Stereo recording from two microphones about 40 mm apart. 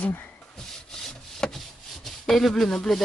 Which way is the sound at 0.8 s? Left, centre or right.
Centre.